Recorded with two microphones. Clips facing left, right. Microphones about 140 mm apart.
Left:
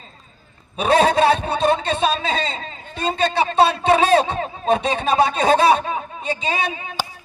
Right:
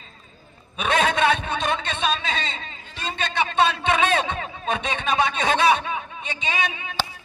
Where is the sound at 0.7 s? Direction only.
35° left (ahead or behind).